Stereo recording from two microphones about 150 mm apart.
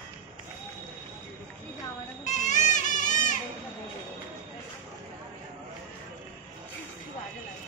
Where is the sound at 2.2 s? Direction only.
50° left (ahead or behind).